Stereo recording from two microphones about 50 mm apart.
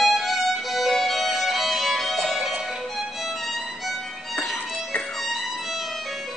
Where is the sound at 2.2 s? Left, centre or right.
Centre.